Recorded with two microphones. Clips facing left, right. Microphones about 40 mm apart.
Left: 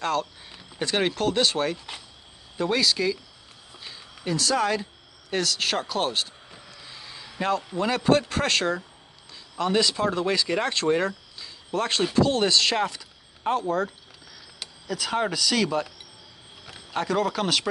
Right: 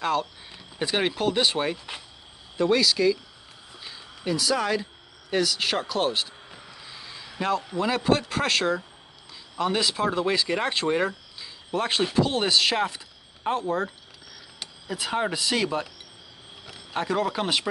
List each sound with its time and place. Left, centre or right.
0.0 s speech: centre
2.5 s speech: centre
13.6 s speech: right
14.9 s speech: centre
16.6 s a sound: centre
17.0 s speech: centre